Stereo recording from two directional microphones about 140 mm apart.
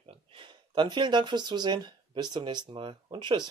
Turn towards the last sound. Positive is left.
turn(degrees=-35)  # may be behind; listen again after turning